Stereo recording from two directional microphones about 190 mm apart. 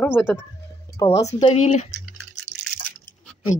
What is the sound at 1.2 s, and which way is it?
Speech, 35° left (ahead or behind).